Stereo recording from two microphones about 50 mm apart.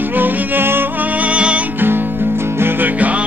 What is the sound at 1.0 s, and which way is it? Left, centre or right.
Music, right.